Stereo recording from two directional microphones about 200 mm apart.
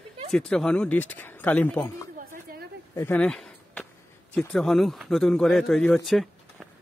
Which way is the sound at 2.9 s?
10° left (ahead or behind).